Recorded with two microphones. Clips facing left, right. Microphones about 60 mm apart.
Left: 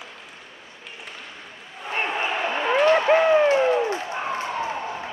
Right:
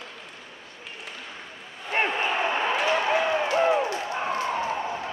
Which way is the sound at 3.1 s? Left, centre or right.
Left.